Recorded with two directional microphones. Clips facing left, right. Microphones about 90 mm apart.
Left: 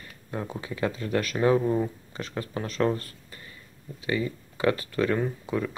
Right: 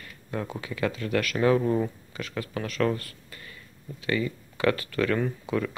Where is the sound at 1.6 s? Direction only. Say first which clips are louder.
Even; centre (ahead or behind).